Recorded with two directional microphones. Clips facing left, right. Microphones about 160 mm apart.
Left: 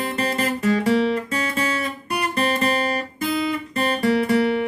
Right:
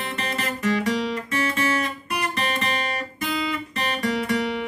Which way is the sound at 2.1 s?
30° left (ahead or behind).